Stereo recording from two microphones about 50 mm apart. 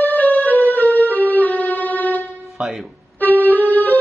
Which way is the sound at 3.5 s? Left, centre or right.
Left.